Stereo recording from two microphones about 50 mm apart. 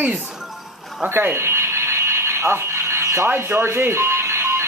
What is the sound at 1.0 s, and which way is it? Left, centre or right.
Alarm, right.